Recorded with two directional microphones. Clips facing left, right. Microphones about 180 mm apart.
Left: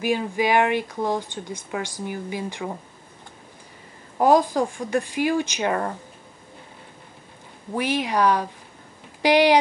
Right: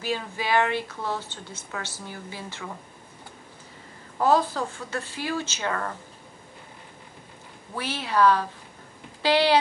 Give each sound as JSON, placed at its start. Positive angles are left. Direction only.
{"t": 0.0, "sound": "speech", "side_deg": 15}
{"t": 4.2, "sound": "speech", "side_deg": 15}
{"t": 7.7, "sound": "speech", "side_deg": 15}